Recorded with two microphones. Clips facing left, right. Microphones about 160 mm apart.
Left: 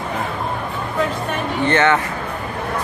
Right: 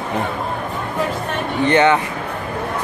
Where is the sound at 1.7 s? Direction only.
15° right (ahead or behind).